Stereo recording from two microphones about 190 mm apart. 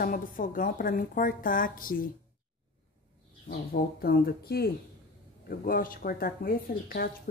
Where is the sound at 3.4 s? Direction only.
55° left (ahead or behind).